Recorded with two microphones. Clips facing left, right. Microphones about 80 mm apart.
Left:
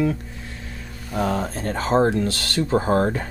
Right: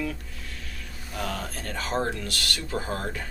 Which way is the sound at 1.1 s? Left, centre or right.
Left.